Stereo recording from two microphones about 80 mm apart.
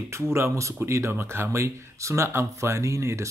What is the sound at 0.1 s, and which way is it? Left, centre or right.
Speech, right.